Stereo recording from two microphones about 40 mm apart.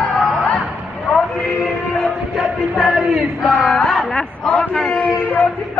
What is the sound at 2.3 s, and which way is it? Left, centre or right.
Music, centre.